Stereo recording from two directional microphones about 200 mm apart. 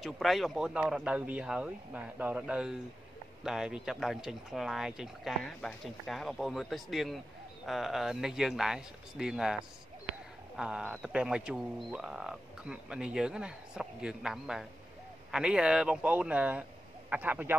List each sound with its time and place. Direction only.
0.0 s speech: centre (ahead or behind)